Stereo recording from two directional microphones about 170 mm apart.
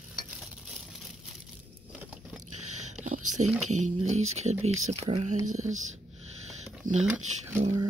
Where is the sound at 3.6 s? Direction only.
45° right (ahead or behind).